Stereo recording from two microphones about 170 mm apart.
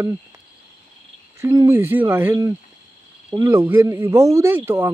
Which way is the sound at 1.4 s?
15° right (ahead or behind).